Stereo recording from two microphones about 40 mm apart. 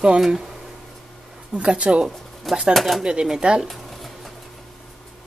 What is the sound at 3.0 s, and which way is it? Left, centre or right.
Speech, right.